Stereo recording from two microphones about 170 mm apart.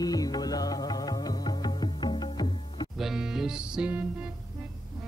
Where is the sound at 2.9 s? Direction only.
Centre (ahead or behind).